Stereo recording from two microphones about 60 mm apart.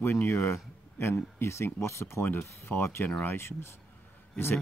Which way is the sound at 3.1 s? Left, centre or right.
Left.